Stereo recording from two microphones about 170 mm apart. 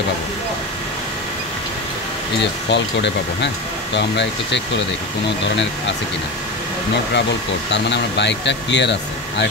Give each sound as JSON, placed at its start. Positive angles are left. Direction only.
{"t": 2.4, "sound": "speech", "side_deg": 90}
{"t": 7.7, "sound": "speech", "side_deg": 90}